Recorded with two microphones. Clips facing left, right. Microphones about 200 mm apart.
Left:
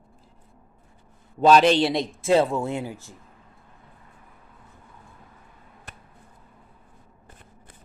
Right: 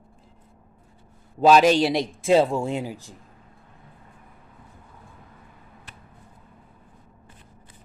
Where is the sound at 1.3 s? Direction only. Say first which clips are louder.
Right 1 dB; 5° right (ahead or behind).